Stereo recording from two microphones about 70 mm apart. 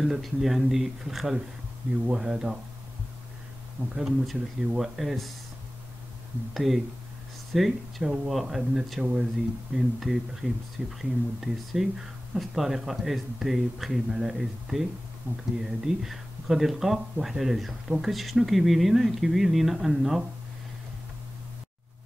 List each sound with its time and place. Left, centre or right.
0.0 s speech: centre
3.9 s speech: centre
6.5 s speech: centre
15.3 s speech: right
15.6 s speech: centre